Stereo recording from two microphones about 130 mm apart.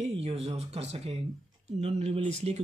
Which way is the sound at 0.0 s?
55° right (ahead or behind).